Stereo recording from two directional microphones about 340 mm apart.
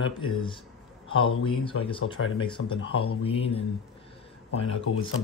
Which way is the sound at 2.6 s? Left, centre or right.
Left.